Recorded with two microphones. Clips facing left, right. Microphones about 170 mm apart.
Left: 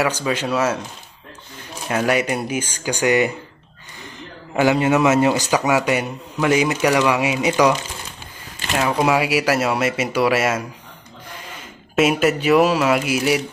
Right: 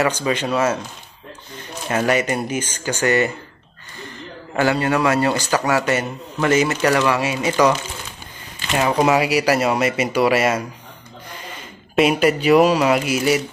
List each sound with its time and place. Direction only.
0.0 s a man's voice: 5° left (ahead or behind)
1.9 s a man's voice: 5° left (ahead or behind)
4.6 s a man's voice: 15° left (ahead or behind)
8.7 s speech: centre (ahead or behind)
11.9 s speech: 5° left (ahead or behind)